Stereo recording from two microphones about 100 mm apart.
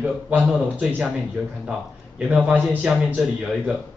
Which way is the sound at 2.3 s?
15° right (ahead or behind).